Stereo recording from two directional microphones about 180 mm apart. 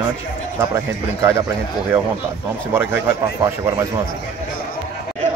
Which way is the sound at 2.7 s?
10° right (ahead or behind).